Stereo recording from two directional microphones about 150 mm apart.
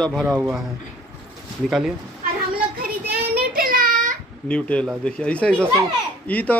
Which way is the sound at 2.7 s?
90° right.